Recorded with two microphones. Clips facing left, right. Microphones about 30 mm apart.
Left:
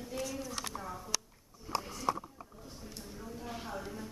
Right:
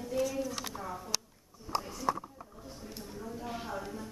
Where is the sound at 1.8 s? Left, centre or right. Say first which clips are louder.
Right 2 dB; centre.